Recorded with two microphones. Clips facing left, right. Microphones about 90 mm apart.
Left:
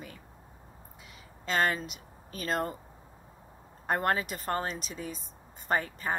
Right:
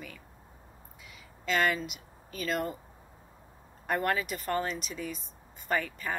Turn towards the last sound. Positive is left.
turn(degrees=35)  # may be behind; listen again after turning